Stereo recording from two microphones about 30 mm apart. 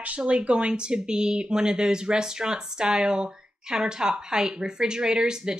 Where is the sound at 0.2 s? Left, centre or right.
Right.